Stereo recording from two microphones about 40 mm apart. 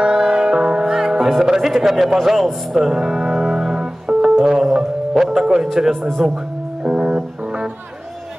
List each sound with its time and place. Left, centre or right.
0.0 s music: centre
1.4 s speech: centre
2.9 s music: centre
5.8 s speech: centre
6.8 s music: right